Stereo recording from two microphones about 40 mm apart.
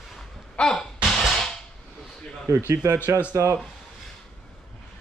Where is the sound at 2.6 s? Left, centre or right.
Left.